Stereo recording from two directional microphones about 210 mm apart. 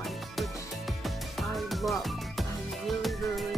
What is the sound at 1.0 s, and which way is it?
Music, centre (ahead or behind).